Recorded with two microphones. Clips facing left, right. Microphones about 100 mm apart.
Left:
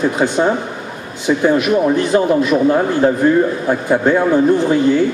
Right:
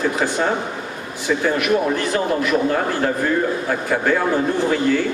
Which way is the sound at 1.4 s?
20° left (ahead or behind).